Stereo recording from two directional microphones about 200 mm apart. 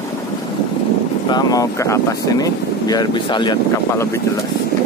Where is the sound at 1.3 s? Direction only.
20° left (ahead or behind).